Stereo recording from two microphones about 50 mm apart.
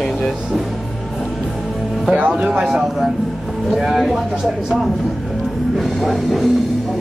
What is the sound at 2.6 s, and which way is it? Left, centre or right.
Speech, centre.